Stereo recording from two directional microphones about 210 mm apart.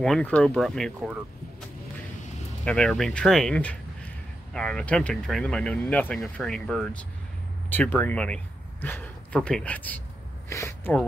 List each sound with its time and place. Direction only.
0.0 s speech: 5° left (ahead or behind)
2.6 s speech: 5° left (ahead or behind)